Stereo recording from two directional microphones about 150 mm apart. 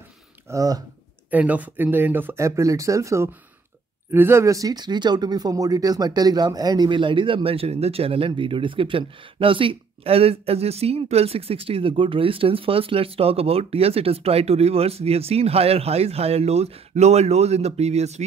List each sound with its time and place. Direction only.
0.5 s speech: 25° right (ahead or behind)
1.3 s speech: 10° right (ahead or behind); by 18.2 s 45° right (ahead or behind)